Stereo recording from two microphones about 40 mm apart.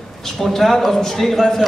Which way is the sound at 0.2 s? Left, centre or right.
Centre.